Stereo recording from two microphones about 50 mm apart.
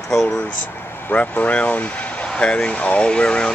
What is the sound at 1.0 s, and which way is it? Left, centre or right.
Speech, left.